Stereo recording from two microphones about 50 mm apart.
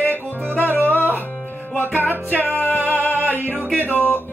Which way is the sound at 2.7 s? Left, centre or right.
Right.